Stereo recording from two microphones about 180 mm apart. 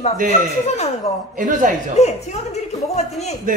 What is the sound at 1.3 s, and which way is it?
Speech, 50° right (ahead or behind).